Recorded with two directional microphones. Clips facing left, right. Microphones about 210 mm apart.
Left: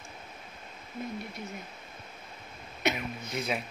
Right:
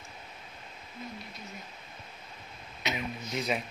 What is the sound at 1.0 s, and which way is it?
Speech, 50° left (ahead or behind).